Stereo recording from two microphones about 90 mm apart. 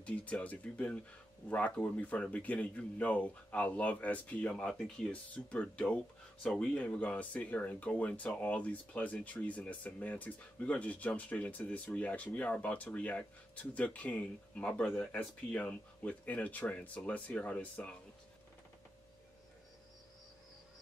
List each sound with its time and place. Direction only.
0.0 s speech: 15° left (ahead or behind)